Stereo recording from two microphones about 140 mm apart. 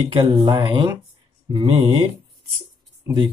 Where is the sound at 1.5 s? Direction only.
40° right (ahead or behind).